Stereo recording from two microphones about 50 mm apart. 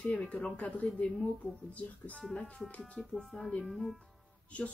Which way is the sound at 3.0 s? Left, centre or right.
Left.